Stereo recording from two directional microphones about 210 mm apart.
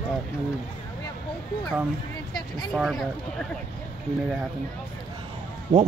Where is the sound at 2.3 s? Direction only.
Centre (ahead or behind).